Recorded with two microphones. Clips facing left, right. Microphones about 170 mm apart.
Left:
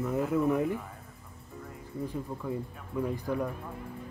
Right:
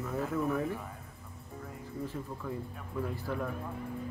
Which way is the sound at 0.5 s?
15° left (ahead or behind).